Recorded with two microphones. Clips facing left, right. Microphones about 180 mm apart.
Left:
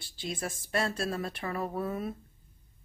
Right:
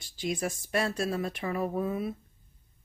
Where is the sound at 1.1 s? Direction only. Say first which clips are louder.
Right 3 dB; 10° right (ahead or behind).